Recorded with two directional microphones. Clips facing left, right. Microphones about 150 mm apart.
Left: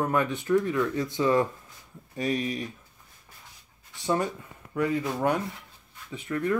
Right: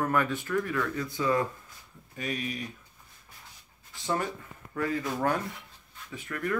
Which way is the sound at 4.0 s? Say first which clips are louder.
Left 4 dB; 20° left (ahead or behind).